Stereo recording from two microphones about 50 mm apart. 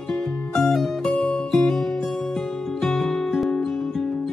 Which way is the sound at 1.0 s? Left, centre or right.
Centre.